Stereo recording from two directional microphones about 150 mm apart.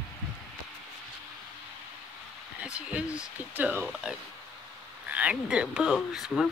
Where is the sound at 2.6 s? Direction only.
10° right (ahead or behind).